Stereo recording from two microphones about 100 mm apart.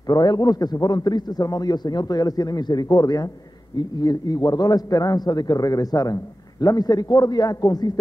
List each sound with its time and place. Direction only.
0.1 s a man's voice: 40° left (ahead or behind)